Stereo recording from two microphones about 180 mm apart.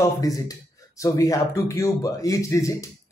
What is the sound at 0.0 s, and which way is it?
A man's voice, 20° left (ahead or behind).